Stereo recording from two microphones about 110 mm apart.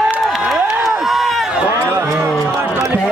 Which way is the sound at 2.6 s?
20° right (ahead or behind).